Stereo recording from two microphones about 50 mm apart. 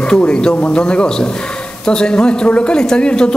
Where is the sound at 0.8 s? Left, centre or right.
Centre.